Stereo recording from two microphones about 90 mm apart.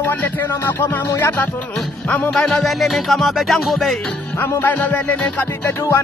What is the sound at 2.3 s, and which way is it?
Music, 5° left (ahead or behind).